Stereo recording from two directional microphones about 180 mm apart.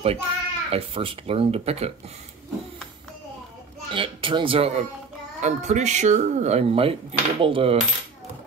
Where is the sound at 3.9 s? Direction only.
30° right (ahead or behind).